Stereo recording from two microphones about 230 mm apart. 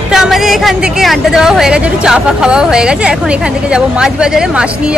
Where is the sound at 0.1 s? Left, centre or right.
Centre.